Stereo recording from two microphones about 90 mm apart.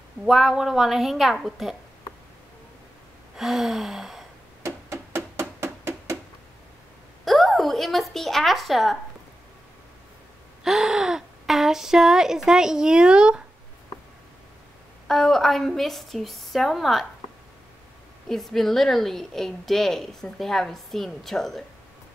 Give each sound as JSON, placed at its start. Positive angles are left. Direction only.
{"t": 0.2, "sound": "a woman's voice", "side_deg": -5}
{"t": 3.3, "sound": "a woman's voice", "side_deg": -5}
{"t": 4.6, "sound": "music", "side_deg": -30}
{"t": 7.2, "sound": "a woman's voice", "side_deg": 0}
{"t": 10.6, "sound": "speech", "side_deg": -5}
{"t": 15.0, "sound": "a woman's voice", "side_deg": 5}
{"t": 18.3, "sound": "a woman's voice", "side_deg": 5}